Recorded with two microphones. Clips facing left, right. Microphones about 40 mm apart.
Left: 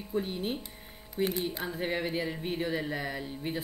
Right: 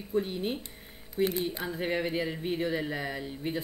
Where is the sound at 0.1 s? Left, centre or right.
Centre.